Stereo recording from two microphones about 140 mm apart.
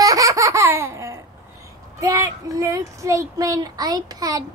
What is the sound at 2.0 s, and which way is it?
Speech, 25° right (ahead or behind).